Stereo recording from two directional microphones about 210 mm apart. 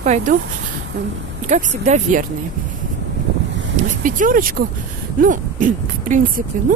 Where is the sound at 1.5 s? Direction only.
35° right (ahead or behind).